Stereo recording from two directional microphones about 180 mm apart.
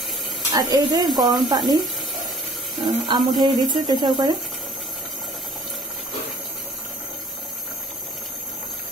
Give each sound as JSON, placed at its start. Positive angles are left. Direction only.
{"t": 0.5, "sound": "speech", "side_deg": -20}
{"t": 2.8, "sound": "speech", "side_deg": -25}